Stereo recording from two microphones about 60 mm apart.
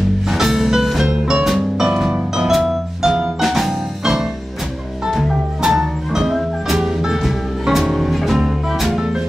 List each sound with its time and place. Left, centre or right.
0.3 s music: centre